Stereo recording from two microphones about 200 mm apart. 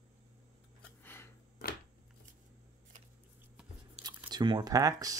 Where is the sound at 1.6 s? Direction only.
50° left (ahead or behind).